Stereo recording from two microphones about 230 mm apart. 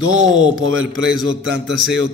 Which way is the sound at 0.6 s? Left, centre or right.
Right.